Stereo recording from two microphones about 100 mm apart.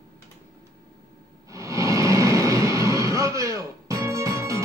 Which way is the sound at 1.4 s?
35° right (ahead or behind).